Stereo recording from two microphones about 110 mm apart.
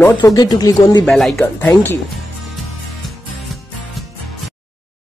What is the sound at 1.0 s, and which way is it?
Speech, 5° left (ahead or behind).